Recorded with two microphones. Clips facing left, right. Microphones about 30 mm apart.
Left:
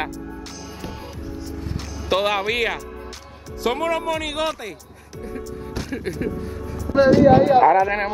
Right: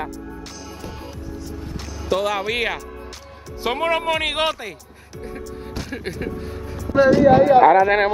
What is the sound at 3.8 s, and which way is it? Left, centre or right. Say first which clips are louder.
Speech: right 3 dB; right.